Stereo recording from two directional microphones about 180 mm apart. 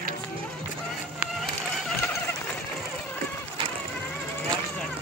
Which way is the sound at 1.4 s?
Centre (ahead or behind).